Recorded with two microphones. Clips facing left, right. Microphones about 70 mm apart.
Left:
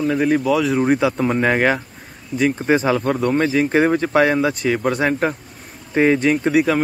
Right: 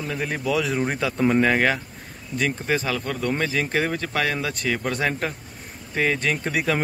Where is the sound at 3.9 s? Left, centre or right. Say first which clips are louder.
Left 9 dB; left.